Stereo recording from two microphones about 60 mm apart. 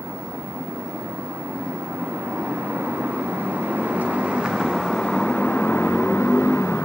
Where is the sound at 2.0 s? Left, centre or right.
Right; by 5.1 s centre.